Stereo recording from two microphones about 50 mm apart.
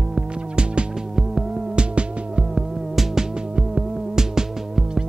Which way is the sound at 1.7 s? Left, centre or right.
Centre.